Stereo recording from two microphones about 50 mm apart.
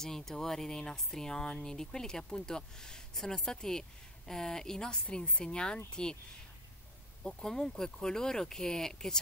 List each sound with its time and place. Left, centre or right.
0.0 s speech: centre
7.2 s speech: centre